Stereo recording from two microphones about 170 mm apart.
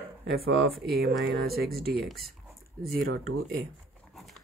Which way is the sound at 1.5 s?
65° right (ahead or behind).